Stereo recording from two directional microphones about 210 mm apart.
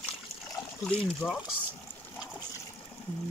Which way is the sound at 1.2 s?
10° left (ahead or behind).